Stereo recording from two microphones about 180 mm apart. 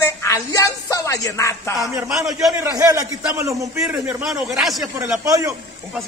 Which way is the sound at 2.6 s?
20° right (ahead or behind).